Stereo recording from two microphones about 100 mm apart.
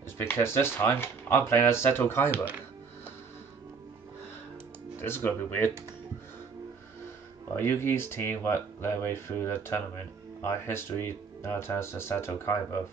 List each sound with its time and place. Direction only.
0.2 s speech: 25° left (ahead or behind)
4.9 s speech: 25° left (ahead or behind)
7.5 s speech: 25° left (ahead or behind)